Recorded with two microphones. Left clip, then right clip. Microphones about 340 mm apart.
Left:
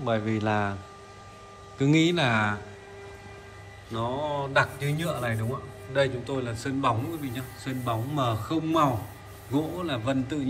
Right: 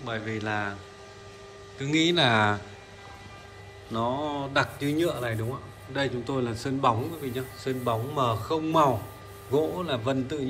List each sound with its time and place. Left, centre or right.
0.1 s a man's voice: centre
1.8 s a man's voice: centre
3.9 s a man's voice: centre